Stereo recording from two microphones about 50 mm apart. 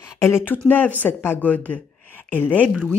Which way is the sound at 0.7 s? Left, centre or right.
Left.